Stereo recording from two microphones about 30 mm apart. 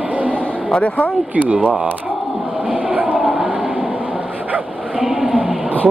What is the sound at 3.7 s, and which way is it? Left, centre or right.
Vehicle, right.